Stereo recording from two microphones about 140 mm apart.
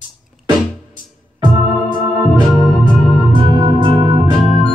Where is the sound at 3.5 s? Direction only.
35° right (ahead or behind).